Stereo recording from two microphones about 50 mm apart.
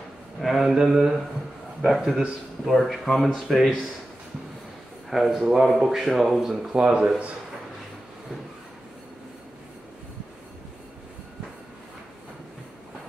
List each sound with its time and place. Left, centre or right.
0.4 s mantra: centre
2.7 s a man's voice: centre
5.1 s a man's voice: centre
6.5 s speech: centre